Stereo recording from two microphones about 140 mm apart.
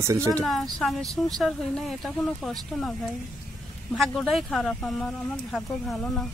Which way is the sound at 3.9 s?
Centre (ahead or behind).